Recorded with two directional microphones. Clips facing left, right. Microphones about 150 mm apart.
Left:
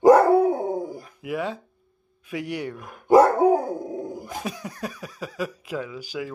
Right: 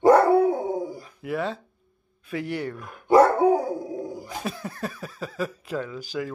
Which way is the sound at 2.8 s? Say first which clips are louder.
Left 1 dB; 10° left (ahead or behind).